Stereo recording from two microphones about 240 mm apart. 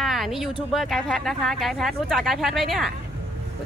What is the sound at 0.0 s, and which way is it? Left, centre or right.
Speech, centre.